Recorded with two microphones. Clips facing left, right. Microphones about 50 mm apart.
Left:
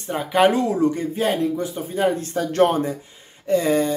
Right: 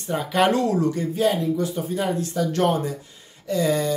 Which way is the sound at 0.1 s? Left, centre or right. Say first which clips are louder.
Left 2 dB; centre.